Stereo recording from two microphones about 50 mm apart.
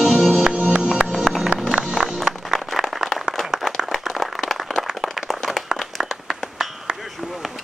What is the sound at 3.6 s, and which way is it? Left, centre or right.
Clapping, centre.